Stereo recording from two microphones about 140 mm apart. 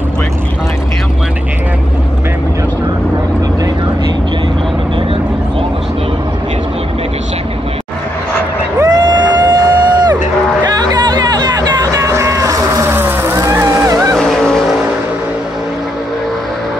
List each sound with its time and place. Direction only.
8.7 s a sound: 30° right (ahead or behind)
10.6 s music: 30° right (ahead or behind)
14.1 s vehicle: 5° left (ahead or behind)